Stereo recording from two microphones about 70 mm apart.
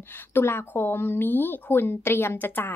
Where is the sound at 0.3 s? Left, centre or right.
Left.